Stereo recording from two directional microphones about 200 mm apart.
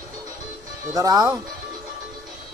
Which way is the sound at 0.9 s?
20° right (ahead or behind).